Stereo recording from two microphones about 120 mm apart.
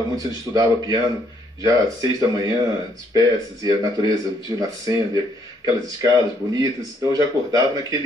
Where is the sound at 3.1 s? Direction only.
30° right (ahead or behind).